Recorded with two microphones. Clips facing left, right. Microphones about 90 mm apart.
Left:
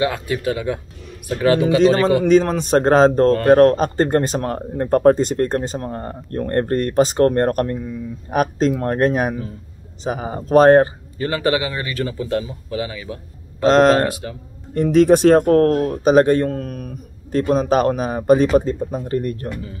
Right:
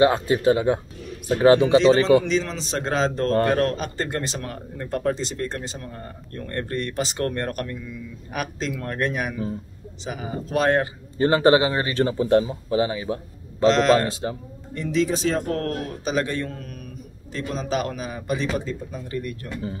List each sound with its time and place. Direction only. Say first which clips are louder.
0.0 s speech: right 3 dB; 30° right (ahead or behind)
1.8 s speech: left 2 dB; 45° left (ahead or behind)
11.1 s speech: right 3 dB; 30° right (ahead or behind)
13.7 s speech: left 5 dB; 40° left (ahead or behind)